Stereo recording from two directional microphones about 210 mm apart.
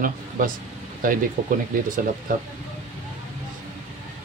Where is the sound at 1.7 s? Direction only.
40° right (ahead or behind).